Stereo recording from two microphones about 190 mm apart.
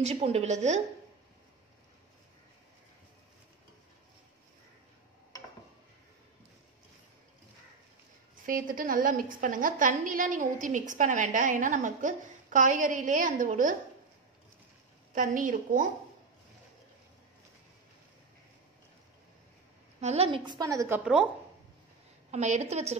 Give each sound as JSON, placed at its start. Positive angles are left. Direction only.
{"t": 0.0, "sound": "a woman's voice", "side_deg": -35}
{"t": 8.5, "sound": "a woman's voice", "side_deg": -45}
{"t": 15.1, "sound": "a woman's voice", "side_deg": -45}
{"t": 20.0, "sound": "a woman's voice", "side_deg": -35}
{"t": 21.0, "sound": "a woman's voice", "side_deg": -5}
{"t": 22.3, "sound": "a woman's voice", "side_deg": -35}